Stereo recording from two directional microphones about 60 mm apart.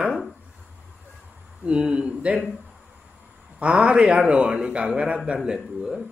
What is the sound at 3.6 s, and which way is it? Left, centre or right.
A man's voice, centre.